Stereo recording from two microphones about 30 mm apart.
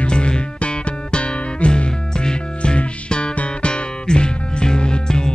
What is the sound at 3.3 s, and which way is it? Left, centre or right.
Music, left.